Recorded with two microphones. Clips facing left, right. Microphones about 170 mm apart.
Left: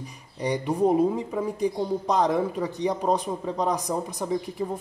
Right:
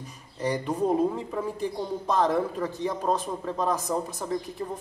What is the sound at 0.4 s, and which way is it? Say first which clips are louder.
Speech: left 3 dB; 15° left (ahead or behind).